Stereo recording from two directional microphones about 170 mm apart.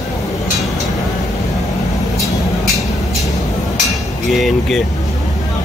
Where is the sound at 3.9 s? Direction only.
Centre (ahead or behind).